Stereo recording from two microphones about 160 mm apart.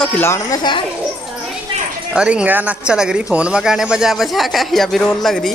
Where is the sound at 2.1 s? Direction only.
5° right (ahead or behind).